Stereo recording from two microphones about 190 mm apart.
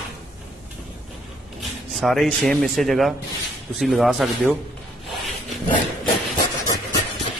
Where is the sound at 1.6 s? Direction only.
Centre (ahead or behind).